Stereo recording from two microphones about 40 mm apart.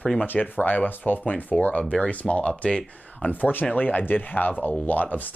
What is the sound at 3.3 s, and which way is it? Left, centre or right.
Speech, left.